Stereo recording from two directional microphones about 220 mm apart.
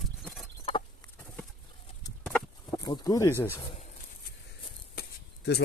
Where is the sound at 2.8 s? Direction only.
15° left (ahead or behind).